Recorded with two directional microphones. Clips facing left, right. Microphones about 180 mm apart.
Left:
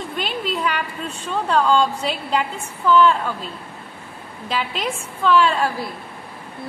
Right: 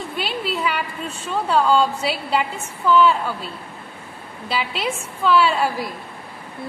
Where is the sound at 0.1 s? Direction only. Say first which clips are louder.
Even; 5° right (ahead or behind).